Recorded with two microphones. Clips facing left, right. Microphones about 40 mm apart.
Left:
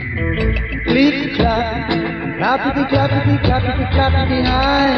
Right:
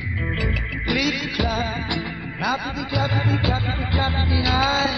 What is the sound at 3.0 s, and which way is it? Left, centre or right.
Music, centre.